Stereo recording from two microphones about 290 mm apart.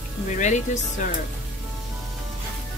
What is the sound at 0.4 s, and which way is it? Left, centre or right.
Speech, left.